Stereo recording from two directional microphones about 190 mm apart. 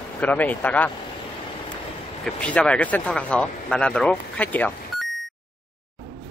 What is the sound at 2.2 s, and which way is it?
Speech, 5° left (ahead or behind).